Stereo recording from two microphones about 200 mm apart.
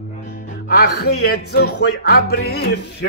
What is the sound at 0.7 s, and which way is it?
Music, 55° left (ahead or behind).